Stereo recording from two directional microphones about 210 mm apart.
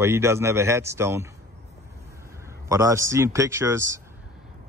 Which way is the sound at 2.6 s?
15° right (ahead or behind).